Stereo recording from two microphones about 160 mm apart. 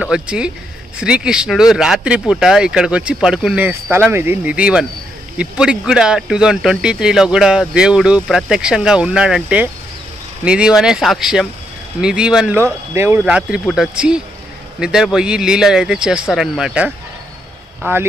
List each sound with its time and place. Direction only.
0.0 s speech: 5° right (ahead or behind)
13.7 s speech: 5° right (ahead or behind)